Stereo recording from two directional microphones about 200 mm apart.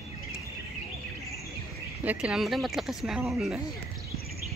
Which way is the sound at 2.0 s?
5° right (ahead or behind).